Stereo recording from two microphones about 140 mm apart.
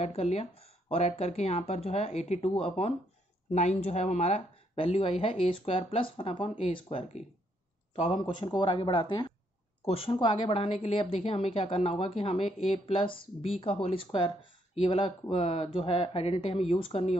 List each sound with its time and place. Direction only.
0.0 s a woman's voice: 50° left (ahead or behind)